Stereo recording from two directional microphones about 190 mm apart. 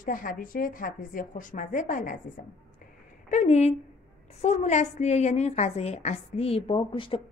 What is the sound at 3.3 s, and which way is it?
A woman's voice, 35° left (ahead or behind).